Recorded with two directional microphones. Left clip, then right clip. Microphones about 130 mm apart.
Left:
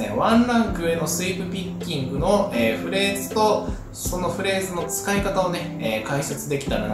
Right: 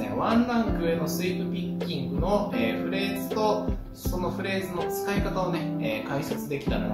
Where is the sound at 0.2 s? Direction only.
5° left (ahead or behind).